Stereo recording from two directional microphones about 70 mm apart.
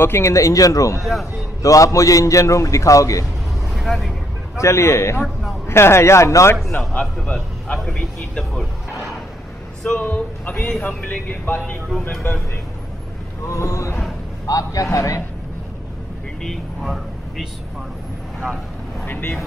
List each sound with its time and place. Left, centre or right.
0.0 s a man's voice: left
3.7 s speech: centre
4.6 s a man's voice: left
7.6 s speech: centre
9.9 s speech: left
12.2 s a man's voice: left
13.5 s a man's voice: left
16.4 s speech: centre
19.0 s speech: left